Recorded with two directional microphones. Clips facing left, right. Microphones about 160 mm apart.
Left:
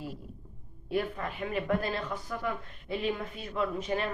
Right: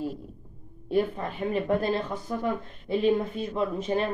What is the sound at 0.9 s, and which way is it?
Speech, 30° right (ahead or behind).